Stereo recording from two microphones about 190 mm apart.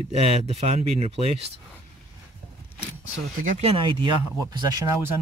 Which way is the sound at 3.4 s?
35° right (ahead or behind).